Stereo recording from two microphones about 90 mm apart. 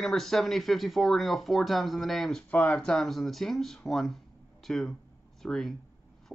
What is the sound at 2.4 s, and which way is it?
Speech, 15° left (ahead or behind).